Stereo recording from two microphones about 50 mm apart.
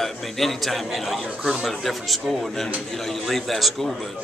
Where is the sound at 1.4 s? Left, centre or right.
Centre.